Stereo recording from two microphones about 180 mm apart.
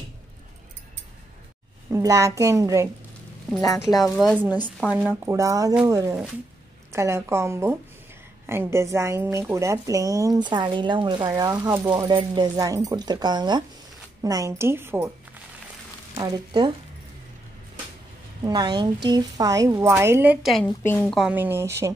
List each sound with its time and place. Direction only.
1.9 s a woman's voice: 15° right (ahead or behind)
3.8 s a woman's voice: centre (ahead or behind)
4.6 s a woman's voice: 5° left (ahead or behind)
4.9 s a woman's voice: 10° right (ahead or behind)
16.2 s speech: 25° right (ahead or behind)
18.4 s a woman's voice: 20° right (ahead or behind)
20.5 s a woman's voice: 10° left (ahead or behind)
21.2 s a woman's voice: 10° right (ahead or behind)